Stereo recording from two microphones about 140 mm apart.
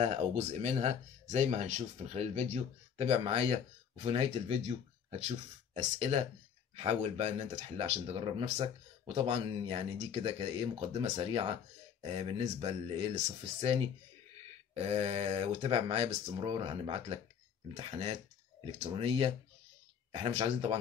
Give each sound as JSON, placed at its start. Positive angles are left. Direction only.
{"t": 0.0, "sound": "speech", "side_deg": -55}
{"t": 5.8, "sound": "speech", "side_deg": -55}
{"t": 18.7, "sound": "speech", "side_deg": -50}